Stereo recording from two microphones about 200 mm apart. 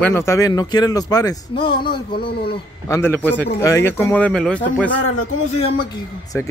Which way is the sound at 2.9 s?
10° left (ahead or behind).